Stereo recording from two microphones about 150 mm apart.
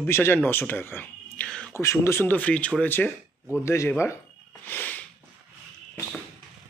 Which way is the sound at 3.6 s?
20° left (ahead or behind).